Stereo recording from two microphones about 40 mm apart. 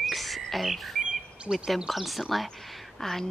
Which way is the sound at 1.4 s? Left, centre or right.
Right.